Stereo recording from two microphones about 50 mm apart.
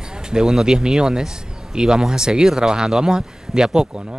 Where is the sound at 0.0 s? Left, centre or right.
Centre.